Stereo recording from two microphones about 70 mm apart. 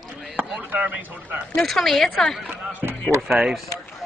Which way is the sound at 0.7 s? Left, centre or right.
Right.